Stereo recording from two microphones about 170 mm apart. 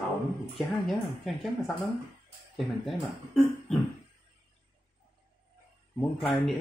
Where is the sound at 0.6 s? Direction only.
Centre (ahead or behind).